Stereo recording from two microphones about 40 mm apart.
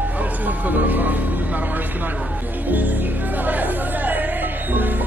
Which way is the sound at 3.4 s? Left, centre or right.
Right.